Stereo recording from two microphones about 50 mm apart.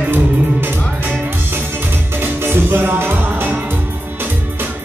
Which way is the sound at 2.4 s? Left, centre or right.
Right.